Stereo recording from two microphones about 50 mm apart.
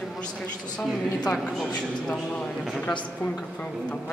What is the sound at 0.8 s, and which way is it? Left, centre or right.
Speech, centre.